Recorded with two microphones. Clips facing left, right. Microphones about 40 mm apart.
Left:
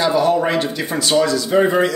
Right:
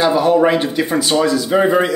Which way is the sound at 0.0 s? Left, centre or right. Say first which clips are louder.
Right 3 dB; centre.